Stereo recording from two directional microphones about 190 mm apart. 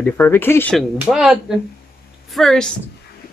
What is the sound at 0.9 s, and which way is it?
Speech, 5° right (ahead or behind).